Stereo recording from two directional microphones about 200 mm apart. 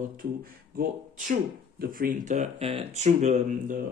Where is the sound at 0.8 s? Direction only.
40° right (ahead or behind).